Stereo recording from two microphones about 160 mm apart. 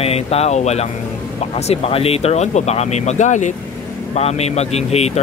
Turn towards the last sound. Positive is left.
turn(degrees=40)  # may be behind; listen again after turning